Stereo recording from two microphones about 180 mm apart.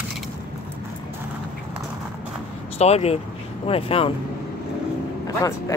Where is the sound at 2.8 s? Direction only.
35° left (ahead or behind).